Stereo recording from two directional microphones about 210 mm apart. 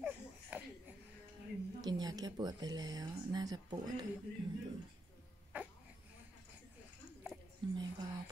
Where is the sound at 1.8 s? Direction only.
20° right (ahead or behind).